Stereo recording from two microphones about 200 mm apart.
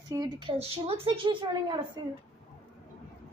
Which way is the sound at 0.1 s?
20° right (ahead or behind).